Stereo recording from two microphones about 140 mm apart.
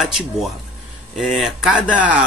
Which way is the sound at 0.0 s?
Centre (ahead or behind).